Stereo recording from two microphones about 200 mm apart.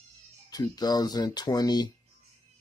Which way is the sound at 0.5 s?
20° left (ahead or behind).